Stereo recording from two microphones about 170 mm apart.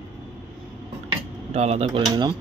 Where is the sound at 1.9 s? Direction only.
25° right (ahead or behind).